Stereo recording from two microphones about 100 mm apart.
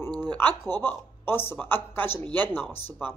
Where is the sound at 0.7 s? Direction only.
20° left (ahead or behind).